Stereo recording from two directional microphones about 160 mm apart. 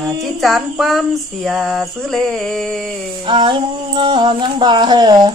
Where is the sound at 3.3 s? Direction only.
30° right (ahead or behind).